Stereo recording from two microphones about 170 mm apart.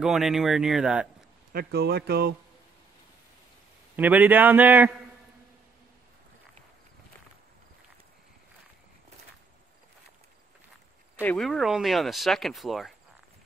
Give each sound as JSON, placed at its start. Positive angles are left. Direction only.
{"t": 0.0, "sound": "speech", "side_deg": 0}
{"t": 1.5, "sound": "speech", "side_deg": -65}
{"t": 3.9, "sound": "a man's voice", "side_deg": -10}
{"t": 11.1, "sound": "speech", "side_deg": 5}